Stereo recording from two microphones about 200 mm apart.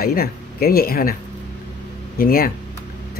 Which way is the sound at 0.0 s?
50° left (ahead or behind).